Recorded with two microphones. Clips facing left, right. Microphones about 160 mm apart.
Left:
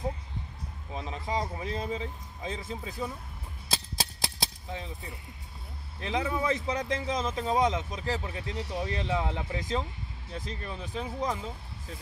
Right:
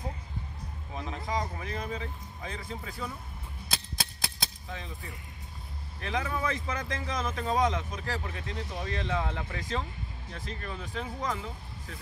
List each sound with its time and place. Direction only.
0.9 s speech: 25° left (ahead or behind)
4.6 s speech: 25° left (ahead or behind)